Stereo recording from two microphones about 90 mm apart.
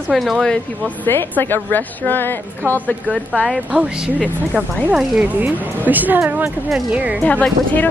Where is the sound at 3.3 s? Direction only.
5° left (ahead or behind).